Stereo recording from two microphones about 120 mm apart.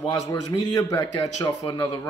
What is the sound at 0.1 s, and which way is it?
A man's voice, 35° left (ahead or behind).